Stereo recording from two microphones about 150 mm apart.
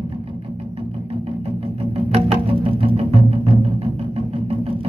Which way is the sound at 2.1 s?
40° right (ahead or behind).